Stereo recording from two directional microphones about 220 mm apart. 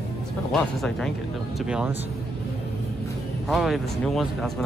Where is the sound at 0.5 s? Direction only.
Centre (ahead or behind).